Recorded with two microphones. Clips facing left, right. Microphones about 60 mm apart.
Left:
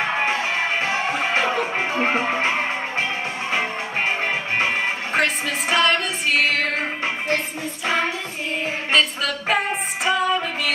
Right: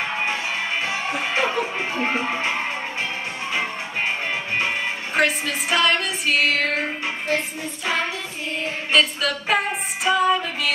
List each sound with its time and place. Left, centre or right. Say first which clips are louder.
0.0 s music: left 3 dB; left
1.4 s music: left 1 dB; centre
5.1 s music: right 2 dB; centre
8.9 s music: right 1 dB; centre